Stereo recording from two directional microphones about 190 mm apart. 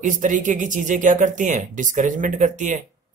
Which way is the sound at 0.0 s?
45° right (ahead or behind).